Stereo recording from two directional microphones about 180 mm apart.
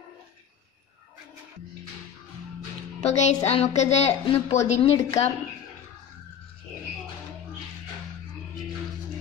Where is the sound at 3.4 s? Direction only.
35° left (ahead or behind).